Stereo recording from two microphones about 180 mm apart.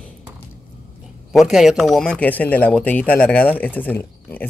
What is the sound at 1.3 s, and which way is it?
A man's voice, centre (ahead or behind).